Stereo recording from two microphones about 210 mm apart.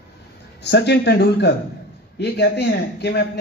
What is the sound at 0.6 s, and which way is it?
A man's voice, 55° left (ahead or behind).